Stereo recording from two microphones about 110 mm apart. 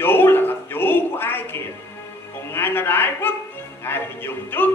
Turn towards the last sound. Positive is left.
turn(degrees=20)  # may be behind; listen again after turning